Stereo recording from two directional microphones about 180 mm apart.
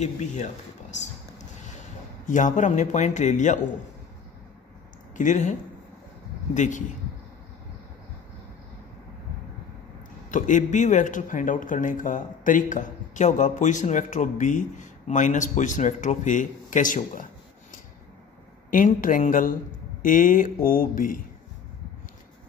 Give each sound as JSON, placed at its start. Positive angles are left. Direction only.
{"t": 0.0, "sound": "speech", "side_deg": 40}
{"t": 2.2, "sound": "speech", "side_deg": 45}
{"t": 5.1, "sound": "speech", "side_deg": 45}
{"t": 10.3, "sound": "speech", "side_deg": 45}